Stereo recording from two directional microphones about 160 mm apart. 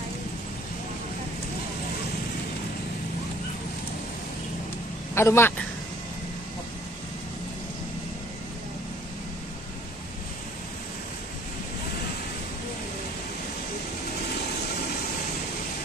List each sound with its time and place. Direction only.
5.1 s a man's voice: 15° left (ahead or behind)